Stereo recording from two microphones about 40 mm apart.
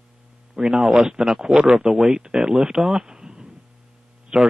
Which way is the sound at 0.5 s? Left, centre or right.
Centre.